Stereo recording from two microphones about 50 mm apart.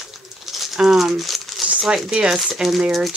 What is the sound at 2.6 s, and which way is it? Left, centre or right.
Speech, centre.